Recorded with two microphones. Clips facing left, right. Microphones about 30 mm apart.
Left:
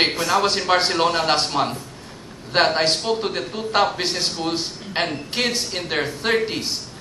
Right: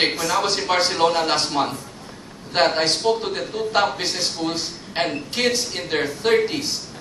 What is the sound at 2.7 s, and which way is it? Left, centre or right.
A man's voice, centre.